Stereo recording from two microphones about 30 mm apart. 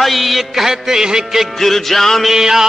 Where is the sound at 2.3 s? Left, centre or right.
Centre.